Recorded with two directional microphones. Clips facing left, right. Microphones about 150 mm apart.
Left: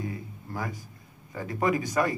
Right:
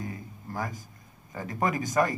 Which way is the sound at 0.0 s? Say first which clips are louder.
Left 2 dB; 45° right (ahead or behind).